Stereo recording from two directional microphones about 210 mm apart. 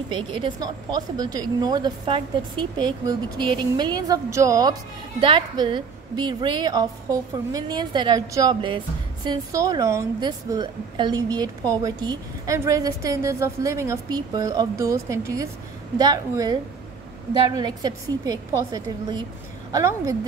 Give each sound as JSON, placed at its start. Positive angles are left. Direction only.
{"t": 0.1, "sound": "a woman's voice", "side_deg": -20}